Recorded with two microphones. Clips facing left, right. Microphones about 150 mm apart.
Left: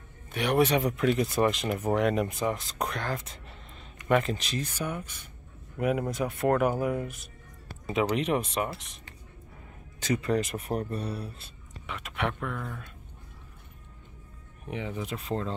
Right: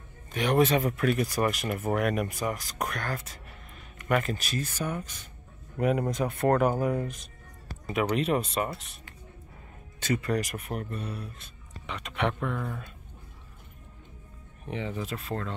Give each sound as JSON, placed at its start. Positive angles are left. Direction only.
{"t": 0.3, "sound": "speech", "side_deg": 10}
{"t": 5.8, "sound": "speech", "side_deg": 5}
{"t": 10.0, "sound": "speech", "side_deg": 20}
{"t": 11.8, "sound": "speech", "side_deg": 5}
{"t": 14.7, "sound": "speech", "side_deg": 10}